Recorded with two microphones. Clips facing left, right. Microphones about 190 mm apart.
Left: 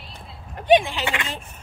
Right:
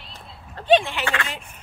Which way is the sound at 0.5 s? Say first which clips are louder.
Left 1 dB; 15° left (ahead or behind).